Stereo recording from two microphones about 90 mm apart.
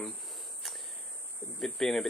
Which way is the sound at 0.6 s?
Centre (ahead or behind).